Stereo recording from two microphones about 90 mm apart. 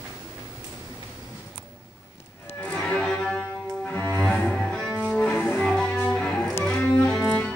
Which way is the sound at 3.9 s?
25° left (ahead or behind).